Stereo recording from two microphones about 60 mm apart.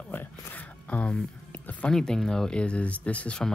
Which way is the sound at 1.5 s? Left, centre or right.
Centre.